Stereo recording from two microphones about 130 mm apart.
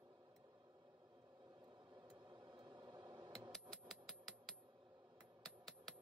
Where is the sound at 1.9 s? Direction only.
35° right (ahead or behind).